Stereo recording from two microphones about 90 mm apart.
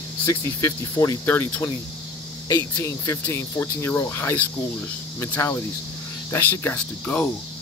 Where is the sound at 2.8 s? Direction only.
35° left (ahead or behind); by 7.3 s 15° left (ahead or behind).